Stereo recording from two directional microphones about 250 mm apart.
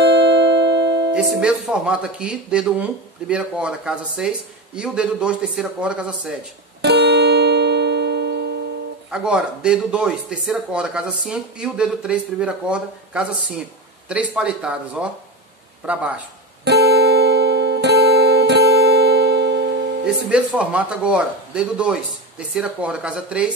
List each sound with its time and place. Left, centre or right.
0.0 s music: right
1.1 s speech: centre
6.8 s music: right
9.1 s speech: centre
16.6 s music: right
20.2 s speech: centre